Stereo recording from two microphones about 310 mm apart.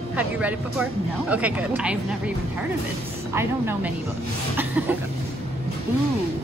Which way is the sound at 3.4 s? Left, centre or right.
Centre.